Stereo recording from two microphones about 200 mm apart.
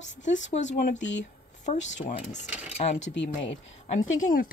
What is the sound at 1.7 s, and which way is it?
Speech, 30° left (ahead or behind).